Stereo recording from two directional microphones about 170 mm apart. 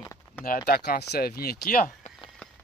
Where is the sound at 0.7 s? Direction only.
75° left (ahead or behind).